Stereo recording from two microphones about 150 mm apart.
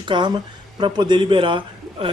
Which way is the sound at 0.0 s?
30° right (ahead or behind).